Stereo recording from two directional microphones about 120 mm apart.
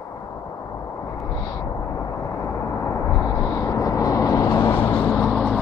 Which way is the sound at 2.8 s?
25° left (ahead or behind).